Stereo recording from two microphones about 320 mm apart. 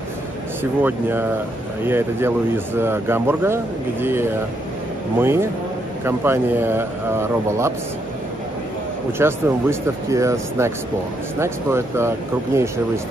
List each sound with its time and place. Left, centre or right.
0.8 s speech: centre
9.2 s speech: centre